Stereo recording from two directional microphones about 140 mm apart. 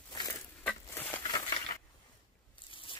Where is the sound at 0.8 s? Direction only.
15° left (ahead or behind).